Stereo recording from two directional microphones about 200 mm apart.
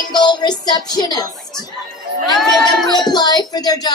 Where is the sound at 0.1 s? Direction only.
20° left (ahead or behind).